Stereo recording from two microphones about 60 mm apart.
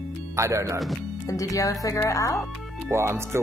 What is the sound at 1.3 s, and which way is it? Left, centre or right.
Speech, left.